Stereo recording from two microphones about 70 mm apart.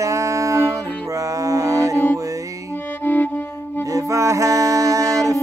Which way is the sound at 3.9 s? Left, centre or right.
Right.